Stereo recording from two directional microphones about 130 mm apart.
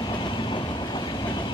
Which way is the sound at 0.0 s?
35° left (ahead or behind).